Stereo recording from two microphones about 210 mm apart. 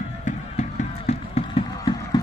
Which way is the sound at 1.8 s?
15° left (ahead or behind).